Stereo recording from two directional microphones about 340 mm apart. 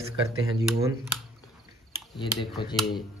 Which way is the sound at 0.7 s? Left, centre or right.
Centre.